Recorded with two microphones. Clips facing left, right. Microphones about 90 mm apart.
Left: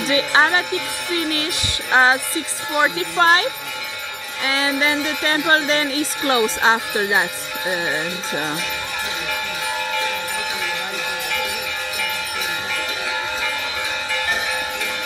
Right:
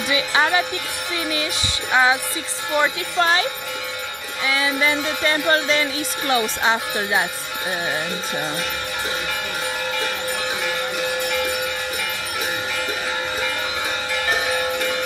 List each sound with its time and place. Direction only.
0.1 s a woman's voice: 30° left (ahead or behind)
1.1 s music: 50° left (ahead or behind)
1.9 s music: 25° left (ahead or behind)
2.8 s speech: 35° left (ahead or behind)
4.5 s speech: 25° left (ahead or behind)